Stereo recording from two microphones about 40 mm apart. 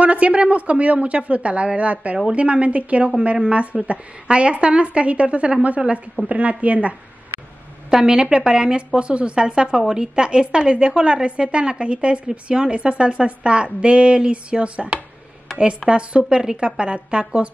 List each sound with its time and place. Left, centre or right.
0.0 s speech: right
7.9 s speech: centre